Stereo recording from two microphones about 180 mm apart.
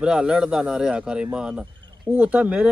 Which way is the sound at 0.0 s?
5° right (ahead or behind).